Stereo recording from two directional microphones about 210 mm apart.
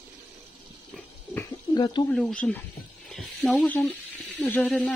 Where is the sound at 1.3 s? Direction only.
20° left (ahead or behind).